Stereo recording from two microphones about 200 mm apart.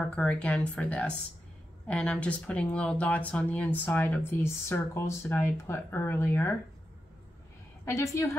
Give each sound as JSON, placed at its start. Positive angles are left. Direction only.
{"t": 0.0, "sound": "speech", "side_deg": 5}
{"t": 7.8, "sound": "speech", "side_deg": 15}